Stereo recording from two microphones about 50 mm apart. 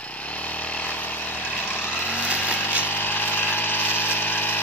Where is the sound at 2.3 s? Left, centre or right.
Left.